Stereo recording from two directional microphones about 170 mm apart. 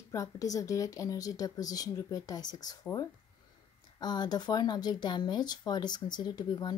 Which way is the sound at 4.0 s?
25° left (ahead or behind).